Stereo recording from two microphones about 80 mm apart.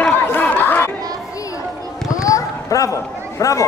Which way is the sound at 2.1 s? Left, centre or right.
Left.